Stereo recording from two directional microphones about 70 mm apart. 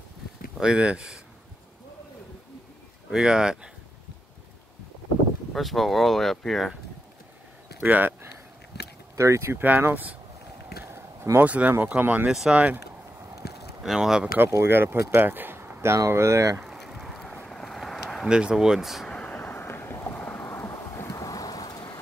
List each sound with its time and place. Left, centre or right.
0.6 s speech: centre
3.1 s speech: centre
5.5 s speech: centre
7.8 s speech: right
9.1 s speech: right
9.6 s speech: right
11.3 s speech: right
12.3 s speech: centre
13.8 s speech: centre
14.4 s speech: right
16.6 s vehicle: centre
19.0 s thunder: centre; by 21.1 s left
21.1 s thunder: left